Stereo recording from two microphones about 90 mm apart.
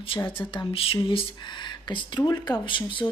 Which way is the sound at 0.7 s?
90° left.